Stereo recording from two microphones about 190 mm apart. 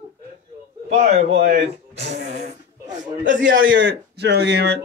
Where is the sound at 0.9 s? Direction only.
35° right (ahead or behind).